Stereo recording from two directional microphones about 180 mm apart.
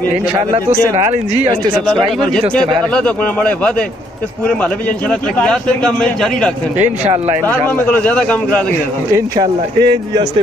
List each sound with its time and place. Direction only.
1.9 s a man's voice: 5° left (ahead or behind)
5.4 s a man's voice: 5° left (ahead or behind)
6.8 s speech: 35° right (ahead or behind)
7.4 s a man's voice: 10° left (ahead or behind)
9.1 s speech: 20° right (ahead or behind)